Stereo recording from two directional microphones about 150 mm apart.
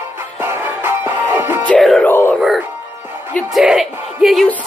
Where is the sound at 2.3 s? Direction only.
Centre (ahead or behind).